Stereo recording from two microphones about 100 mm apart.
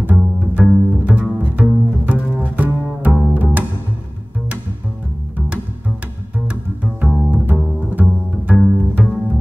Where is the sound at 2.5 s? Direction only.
15° right (ahead or behind).